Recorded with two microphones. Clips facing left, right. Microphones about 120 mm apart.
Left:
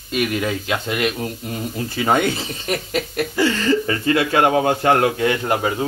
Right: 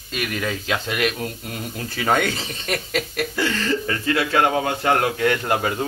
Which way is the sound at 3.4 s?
25° left (ahead or behind).